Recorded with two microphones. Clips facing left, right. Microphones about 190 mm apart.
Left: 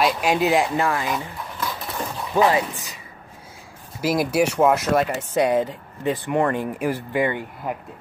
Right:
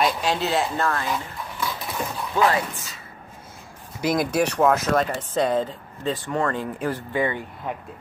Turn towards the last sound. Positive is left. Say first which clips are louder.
# left 2 dB
turn(degrees=10)  # may be behind; listen again after turning